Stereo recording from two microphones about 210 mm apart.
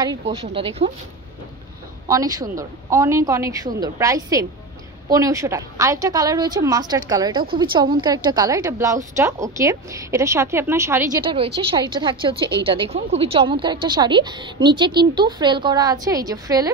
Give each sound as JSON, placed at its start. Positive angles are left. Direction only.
{"t": 0.2, "sound": "a woman's voice", "side_deg": -25}
{"t": 2.0, "sound": "a woman's voice", "side_deg": -15}
{"t": 11.2, "sound": "a woman's voice", "side_deg": -25}